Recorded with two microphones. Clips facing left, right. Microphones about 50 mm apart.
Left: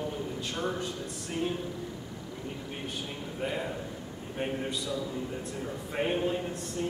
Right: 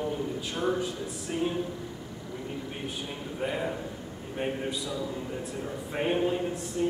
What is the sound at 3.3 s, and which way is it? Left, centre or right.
Speech, centre.